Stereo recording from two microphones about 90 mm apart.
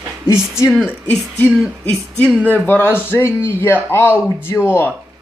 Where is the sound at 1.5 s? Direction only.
5° left (ahead or behind).